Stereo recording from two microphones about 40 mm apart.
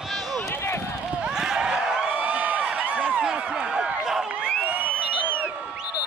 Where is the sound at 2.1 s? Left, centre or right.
Right.